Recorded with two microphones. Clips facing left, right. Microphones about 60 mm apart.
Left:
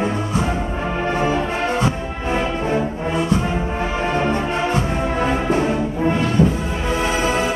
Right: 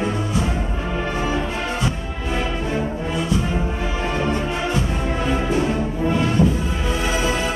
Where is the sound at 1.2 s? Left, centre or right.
Left.